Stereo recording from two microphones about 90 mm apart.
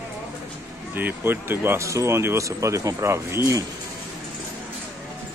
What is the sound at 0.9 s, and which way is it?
Speech, 25° right (ahead or behind).